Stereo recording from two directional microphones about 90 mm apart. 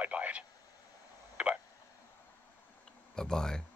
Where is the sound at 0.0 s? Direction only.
15° right (ahead or behind).